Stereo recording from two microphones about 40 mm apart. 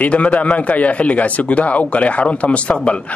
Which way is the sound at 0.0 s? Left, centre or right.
Left.